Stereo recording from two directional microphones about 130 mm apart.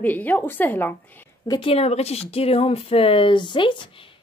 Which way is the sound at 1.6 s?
50° left (ahead or behind).